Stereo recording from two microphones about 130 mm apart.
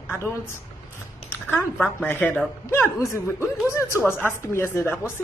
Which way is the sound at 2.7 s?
20° left (ahead or behind).